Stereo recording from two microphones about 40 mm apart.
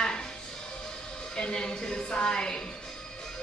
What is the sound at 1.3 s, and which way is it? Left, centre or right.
A woman's voice, centre.